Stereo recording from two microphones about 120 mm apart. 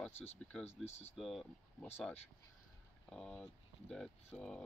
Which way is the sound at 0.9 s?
65° left (ahead or behind).